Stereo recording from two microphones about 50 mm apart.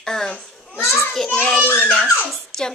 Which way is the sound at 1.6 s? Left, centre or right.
Left.